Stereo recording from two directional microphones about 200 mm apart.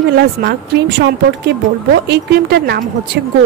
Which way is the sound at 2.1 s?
55° right (ahead or behind).